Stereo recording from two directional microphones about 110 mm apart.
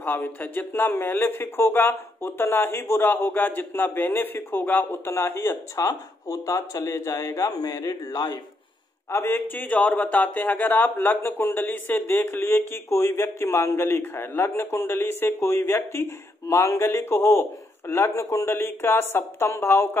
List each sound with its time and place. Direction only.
0.0 s a man's voice: 15° left (ahead or behind); by 8.4 s 35° left (ahead or behind)
9.1 s a man's voice: 20° left (ahead or behind)